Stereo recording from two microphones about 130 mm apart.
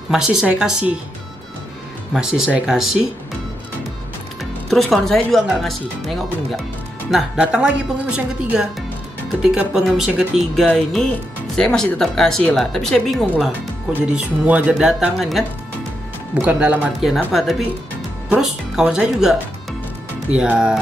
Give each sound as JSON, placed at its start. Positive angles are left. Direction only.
{"t": 0.1, "sound": "speech", "side_deg": -5}
{"t": 2.1, "sound": "speech", "side_deg": -5}
{"t": 4.4, "sound": "speech", "side_deg": 0}
{"t": 14.1, "sound": "speech", "side_deg": -10}